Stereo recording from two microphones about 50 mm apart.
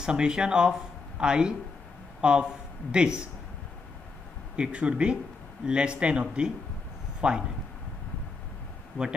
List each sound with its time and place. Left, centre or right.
0.0 s a man's voice: centre
4.6 s speech: right
9.0 s speech: left